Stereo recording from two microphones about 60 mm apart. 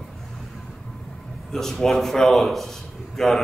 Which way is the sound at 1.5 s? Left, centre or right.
Centre.